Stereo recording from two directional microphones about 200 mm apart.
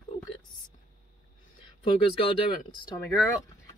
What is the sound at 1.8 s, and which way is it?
Speech, 25° left (ahead or behind).